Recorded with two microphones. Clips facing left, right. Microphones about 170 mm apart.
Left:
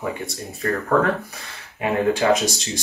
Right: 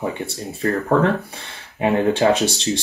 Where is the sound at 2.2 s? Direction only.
30° right (ahead or behind).